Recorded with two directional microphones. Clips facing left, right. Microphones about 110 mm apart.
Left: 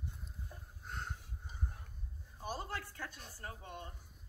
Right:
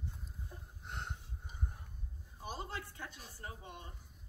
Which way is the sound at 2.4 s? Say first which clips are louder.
Left 2 dB; 20° right (ahead or behind).